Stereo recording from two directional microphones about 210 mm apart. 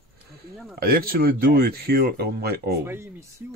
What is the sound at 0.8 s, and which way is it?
Speech, 45° right (ahead or behind).